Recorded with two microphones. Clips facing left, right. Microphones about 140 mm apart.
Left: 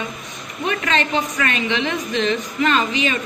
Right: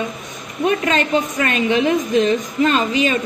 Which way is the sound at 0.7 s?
40° right (ahead or behind).